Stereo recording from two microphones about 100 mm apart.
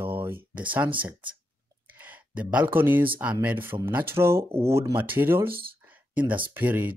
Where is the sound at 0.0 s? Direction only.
20° right (ahead or behind).